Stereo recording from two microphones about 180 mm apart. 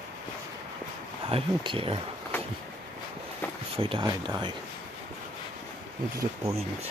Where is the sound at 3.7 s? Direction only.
30° right (ahead or behind).